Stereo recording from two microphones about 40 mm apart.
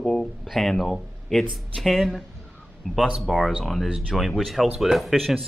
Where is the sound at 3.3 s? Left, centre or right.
Centre.